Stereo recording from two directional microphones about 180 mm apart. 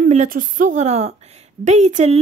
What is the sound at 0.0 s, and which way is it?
A woman's voice, 45° right (ahead or behind).